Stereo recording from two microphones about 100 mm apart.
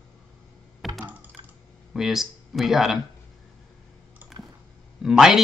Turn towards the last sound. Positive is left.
turn(degrees=-5)  # may be behind; listen again after turning